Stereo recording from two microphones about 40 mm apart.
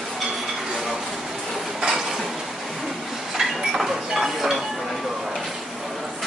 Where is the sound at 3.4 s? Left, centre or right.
Centre.